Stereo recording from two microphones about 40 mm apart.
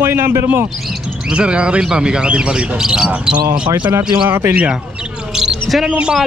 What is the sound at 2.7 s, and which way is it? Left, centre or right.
Speech, centre.